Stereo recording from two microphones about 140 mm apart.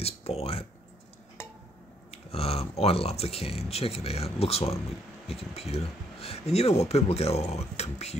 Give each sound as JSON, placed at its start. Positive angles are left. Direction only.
{"t": 0.0, "sound": "clicking", "side_deg": 45}
{"t": 2.0, "sound": "speech", "side_deg": 45}